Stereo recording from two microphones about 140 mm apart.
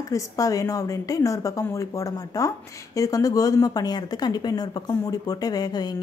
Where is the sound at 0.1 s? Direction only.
25° left (ahead or behind).